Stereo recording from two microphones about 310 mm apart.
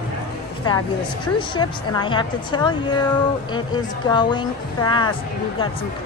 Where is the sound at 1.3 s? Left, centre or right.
Centre.